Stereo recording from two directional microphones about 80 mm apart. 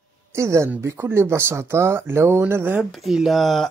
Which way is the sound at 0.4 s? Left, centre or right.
Right.